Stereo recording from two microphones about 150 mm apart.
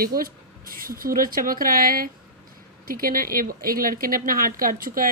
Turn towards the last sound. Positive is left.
turn(degrees=-70)  # may be behind; listen again after turning